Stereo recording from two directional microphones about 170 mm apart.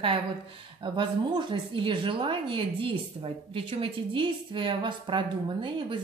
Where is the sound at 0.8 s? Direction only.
25° right (ahead or behind).